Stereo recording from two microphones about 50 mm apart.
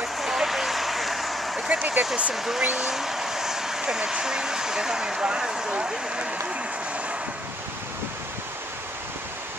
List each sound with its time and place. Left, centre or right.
0.0 s vehicle: centre
1.7 s a sound: right
2.3 s speech: centre